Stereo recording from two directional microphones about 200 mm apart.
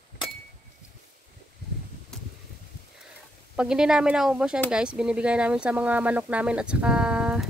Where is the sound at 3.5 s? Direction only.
5° right (ahead or behind).